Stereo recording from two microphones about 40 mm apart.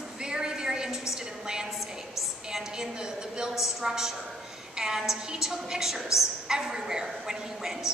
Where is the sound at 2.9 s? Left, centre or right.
Centre.